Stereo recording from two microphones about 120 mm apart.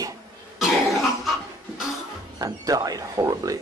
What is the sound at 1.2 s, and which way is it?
Cough, centre (ahead or behind).